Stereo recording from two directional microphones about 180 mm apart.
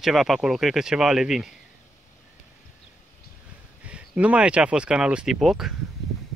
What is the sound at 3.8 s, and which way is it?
Speech, 5° right (ahead or behind).